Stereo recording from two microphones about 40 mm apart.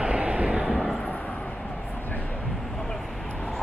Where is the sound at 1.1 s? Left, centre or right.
Left.